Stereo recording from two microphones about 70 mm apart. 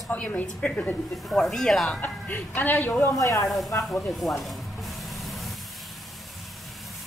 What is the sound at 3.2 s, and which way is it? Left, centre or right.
Speech, left.